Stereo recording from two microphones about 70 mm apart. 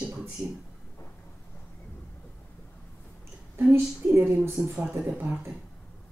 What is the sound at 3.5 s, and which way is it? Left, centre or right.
Speech, right.